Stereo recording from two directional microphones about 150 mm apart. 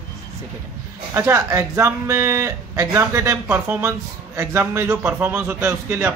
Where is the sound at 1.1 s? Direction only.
20° right (ahead or behind).